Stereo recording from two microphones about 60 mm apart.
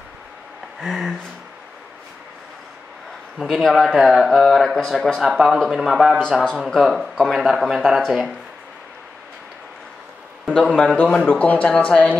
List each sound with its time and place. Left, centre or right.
0.7 s speech: centre
3.3 s speech: centre
10.4 s speech: centre